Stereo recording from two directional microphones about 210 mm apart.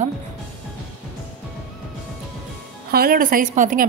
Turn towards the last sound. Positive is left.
turn(degrees=-40)  # may be behind; listen again after turning